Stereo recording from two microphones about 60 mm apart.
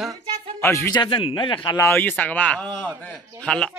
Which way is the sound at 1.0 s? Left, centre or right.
Left.